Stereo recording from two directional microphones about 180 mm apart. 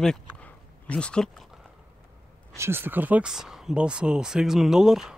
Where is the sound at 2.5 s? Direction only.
15° right (ahead or behind).